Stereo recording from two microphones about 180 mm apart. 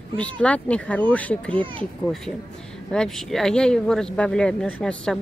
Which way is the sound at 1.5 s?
30° right (ahead or behind).